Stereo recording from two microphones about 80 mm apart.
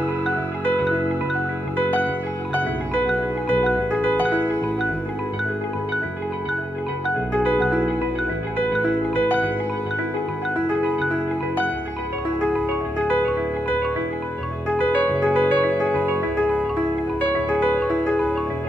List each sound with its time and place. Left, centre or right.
4.0 s music: centre
7.3 s music: centre
9.1 s music: centre
14.7 s music: centre
17.7 s music: centre